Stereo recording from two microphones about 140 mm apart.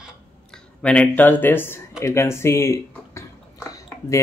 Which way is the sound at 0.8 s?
10° left (ahead or behind).